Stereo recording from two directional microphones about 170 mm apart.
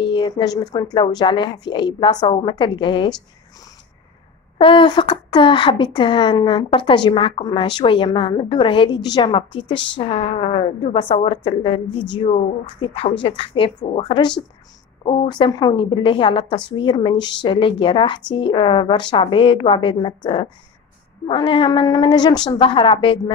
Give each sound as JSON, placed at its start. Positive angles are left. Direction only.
{"t": 0.0, "sound": "a woman's voice", "side_deg": 25}
{"t": 4.6, "sound": "a woman's voice", "side_deg": 30}
{"t": 21.3, "sound": "a woman's voice", "side_deg": 30}